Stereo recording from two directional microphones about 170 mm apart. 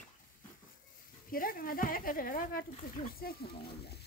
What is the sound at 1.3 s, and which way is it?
Speech, 55° left (ahead or behind).